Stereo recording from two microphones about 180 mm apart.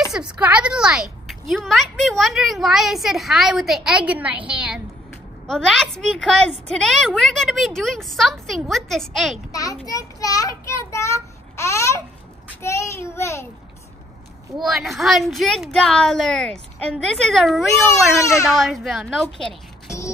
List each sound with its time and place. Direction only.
0.1 s a woman's voice: 5° right (ahead or behind)
9.5 s a child's voice: 20° left (ahead or behind)
14.6 s a woman's voice: centre (ahead or behind)
18.2 s a child's voice: 15° left (ahead or behind)
18.6 s a woman's voice: centre (ahead or behind)